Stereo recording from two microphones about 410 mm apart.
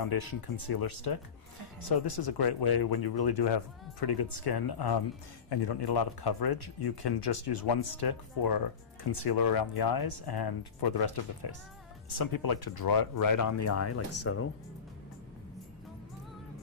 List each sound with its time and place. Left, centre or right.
0.0 s speech: left
12.1 s speech: left